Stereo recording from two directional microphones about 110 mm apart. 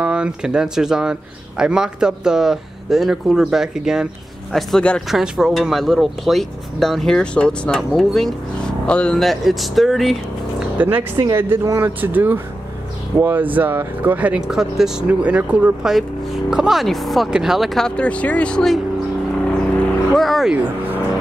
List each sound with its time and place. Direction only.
0.0 s speech: 10° right (ahead or behind)
10.8 s speech: 15° right (ahead or behind); by 18.8 s 5° left (ahead or behind)
20.2 s speech: centre (ahead or behind)
20.5 s speech: 15° right (ahead or behind)